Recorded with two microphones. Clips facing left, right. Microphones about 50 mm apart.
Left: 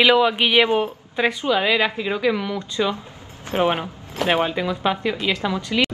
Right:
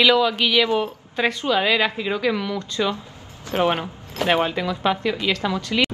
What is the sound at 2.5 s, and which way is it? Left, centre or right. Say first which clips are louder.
Speech: left 1 dB; left.